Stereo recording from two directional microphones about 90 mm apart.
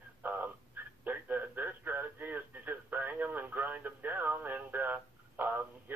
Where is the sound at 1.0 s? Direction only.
20° right (ahead or behind).